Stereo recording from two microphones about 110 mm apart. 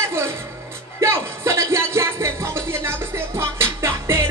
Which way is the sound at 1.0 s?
25° right (ahead or behind).